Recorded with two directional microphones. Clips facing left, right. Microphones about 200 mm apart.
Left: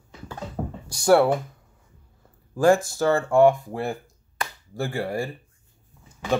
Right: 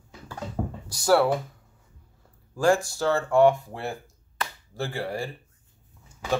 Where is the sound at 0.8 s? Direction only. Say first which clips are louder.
Left 4 dB; 25° left (ahead or behind).